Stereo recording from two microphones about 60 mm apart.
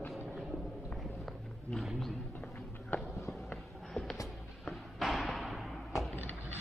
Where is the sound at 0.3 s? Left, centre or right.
Centre.